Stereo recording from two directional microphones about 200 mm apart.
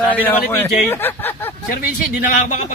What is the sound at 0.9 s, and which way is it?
Speech, 10° left (ahead or behind).